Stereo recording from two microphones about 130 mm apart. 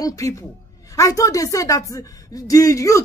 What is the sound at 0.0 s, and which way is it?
A woman's voice, 25° left (ahead or behind).